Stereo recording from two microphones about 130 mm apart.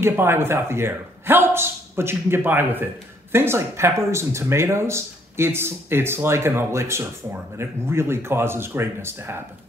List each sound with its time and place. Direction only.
0.0 s a man's voice: 20° right (ahead or behind)